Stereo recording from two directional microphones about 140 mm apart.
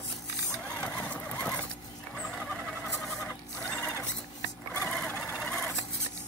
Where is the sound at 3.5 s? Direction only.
5° left (ahead or behind).